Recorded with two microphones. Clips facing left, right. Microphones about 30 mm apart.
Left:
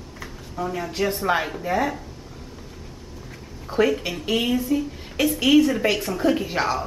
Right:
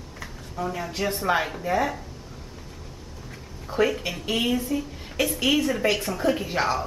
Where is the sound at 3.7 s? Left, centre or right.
Centre.